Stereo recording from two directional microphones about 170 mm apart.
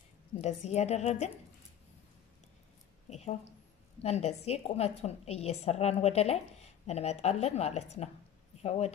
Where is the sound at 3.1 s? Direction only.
40° left (ahead or behind).